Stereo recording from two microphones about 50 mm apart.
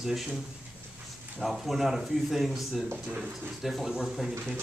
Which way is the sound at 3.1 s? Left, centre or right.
Right.